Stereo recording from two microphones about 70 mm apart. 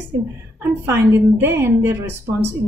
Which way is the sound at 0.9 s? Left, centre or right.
Right.